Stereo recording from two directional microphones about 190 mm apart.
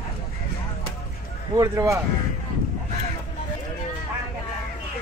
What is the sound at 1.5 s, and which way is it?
Speech, 15° right (ahead or behind).